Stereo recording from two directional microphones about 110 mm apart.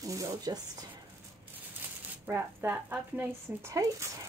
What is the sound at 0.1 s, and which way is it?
Speech, 30° right (ahead or behind).